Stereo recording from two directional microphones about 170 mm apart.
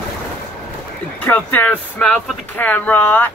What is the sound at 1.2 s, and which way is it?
Speech, 10° left (ahead or behind).